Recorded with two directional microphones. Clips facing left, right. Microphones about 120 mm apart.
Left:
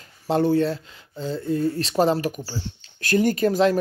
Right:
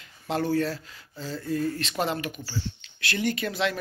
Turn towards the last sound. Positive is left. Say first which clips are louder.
# left 9 dB
turn(degrees=40)  # may be behind; listen again after turning